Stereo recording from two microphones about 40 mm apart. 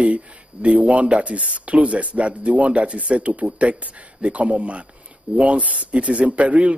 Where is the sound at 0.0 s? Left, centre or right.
Right.